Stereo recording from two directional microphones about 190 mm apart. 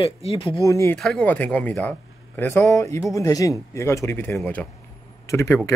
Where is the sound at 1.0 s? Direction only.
5° left (ahead or behind).